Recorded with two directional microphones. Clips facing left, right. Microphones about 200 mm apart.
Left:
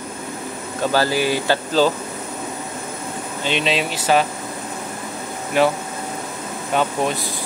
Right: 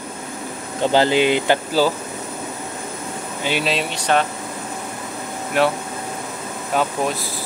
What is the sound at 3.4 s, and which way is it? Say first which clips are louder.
Speech: left 1 dB; 5° right (ahead or behind).